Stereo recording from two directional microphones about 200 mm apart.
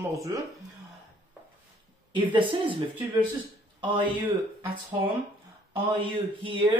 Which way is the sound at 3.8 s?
25° right (ahead or behind).